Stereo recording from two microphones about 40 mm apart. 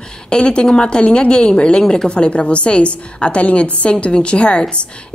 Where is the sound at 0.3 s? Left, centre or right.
Left.